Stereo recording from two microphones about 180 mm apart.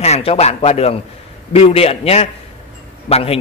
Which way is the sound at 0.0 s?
35° left (ahead or behind).